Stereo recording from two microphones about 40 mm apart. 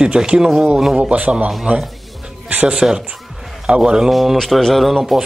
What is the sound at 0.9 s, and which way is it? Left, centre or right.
Speech, right.